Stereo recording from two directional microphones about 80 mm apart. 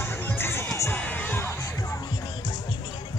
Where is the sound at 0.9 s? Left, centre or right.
Left.